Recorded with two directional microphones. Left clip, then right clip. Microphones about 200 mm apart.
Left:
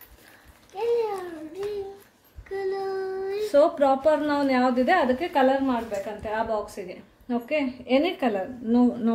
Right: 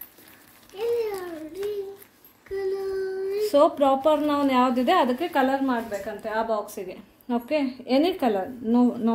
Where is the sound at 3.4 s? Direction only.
15° right (ahead or behind).